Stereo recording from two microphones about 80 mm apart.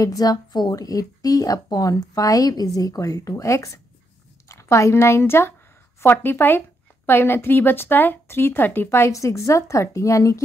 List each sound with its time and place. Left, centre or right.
0.0 s a woman's voice: left
9.1 s a woman's voice: left